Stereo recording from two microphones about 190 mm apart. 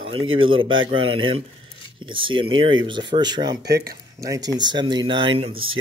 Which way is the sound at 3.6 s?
60° right (ahead or behind).